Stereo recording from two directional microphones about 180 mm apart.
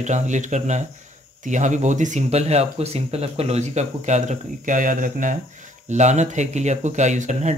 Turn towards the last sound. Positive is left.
turn(degrees=-40)  # may be behind; listen again after turning